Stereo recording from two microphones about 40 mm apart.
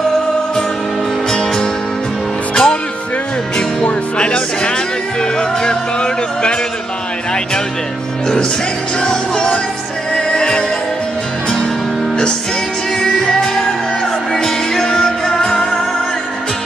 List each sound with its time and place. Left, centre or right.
2.5 s music: centre
9.0 s music: centre
13.0 s music: centre